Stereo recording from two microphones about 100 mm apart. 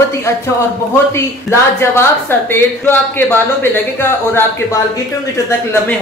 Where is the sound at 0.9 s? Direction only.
30° left (ahead or behind).